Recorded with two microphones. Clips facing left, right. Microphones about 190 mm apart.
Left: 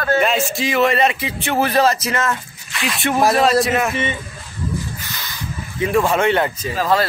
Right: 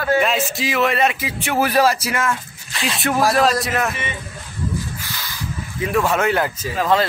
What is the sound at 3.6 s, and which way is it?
Speech, centre (ahead or behind).